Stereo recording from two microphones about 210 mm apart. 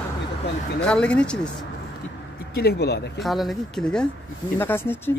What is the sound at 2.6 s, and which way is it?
Speech, 50° left (ahead or behind).